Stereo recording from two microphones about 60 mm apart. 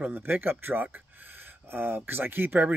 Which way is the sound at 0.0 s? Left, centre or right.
Right.